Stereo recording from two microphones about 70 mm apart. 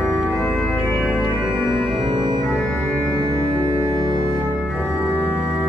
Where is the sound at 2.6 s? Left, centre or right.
Centre.